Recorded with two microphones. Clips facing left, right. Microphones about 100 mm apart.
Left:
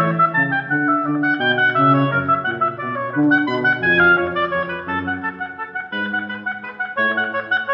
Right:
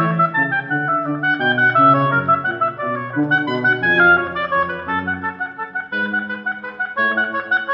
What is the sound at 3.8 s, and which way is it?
Music, 20° right (ahead or behind).